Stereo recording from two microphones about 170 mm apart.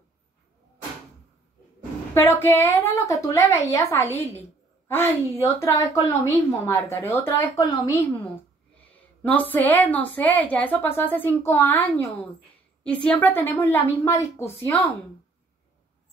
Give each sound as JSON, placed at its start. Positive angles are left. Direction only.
{"t": 2.1, "sound": "a woman's voice", "side_deg": 15}
{"t": 9.2, "sound": "a woman's voice", "side_deg": 10}